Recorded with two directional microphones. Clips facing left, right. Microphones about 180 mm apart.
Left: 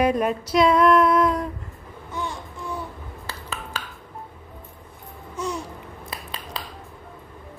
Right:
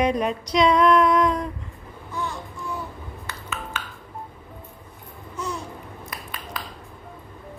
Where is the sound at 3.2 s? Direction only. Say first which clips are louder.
Even; 35° left (ahead or behind).